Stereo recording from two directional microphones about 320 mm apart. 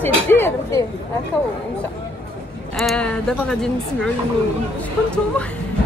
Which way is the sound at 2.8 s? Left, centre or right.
Centre.